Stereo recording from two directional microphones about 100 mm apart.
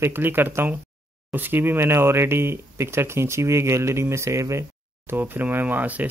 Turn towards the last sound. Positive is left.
turn(degrees=-15)  # may be behind; listen again after turning